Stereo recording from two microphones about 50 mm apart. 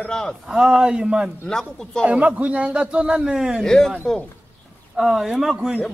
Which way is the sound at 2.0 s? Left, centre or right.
Right.